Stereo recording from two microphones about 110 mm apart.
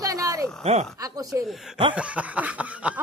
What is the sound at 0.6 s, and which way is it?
Speech, 75° right (ahead or behind).